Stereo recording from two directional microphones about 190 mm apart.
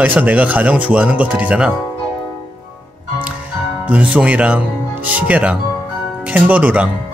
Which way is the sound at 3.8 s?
5° right (ahead or behind).